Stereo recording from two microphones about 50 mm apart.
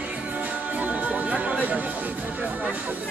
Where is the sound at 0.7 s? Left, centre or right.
Right.